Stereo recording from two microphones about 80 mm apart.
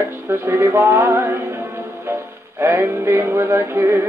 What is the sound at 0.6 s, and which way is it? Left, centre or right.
Music, right.